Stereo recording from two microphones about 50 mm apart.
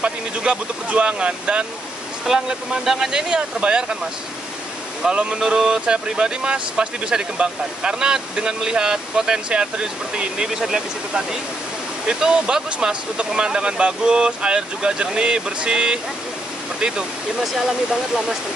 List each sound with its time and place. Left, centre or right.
0.0 s speech: right
5.0 s speech: right